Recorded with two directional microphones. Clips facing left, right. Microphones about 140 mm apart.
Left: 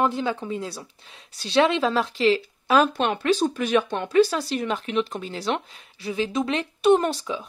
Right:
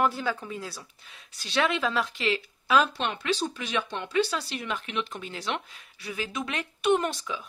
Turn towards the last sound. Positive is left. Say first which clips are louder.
# left 5 dB
turn(degrees=30)  # may be behind; listen again after turning